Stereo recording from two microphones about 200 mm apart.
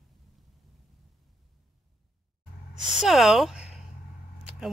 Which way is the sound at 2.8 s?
Centre (ahead or behind).